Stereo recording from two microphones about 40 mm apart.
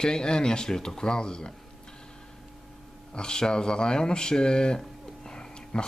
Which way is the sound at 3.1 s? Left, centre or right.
Left.